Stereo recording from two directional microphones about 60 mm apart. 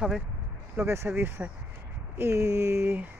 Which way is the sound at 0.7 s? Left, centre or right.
Right.